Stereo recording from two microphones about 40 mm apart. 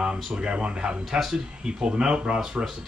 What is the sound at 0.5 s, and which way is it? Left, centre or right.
Speech, right.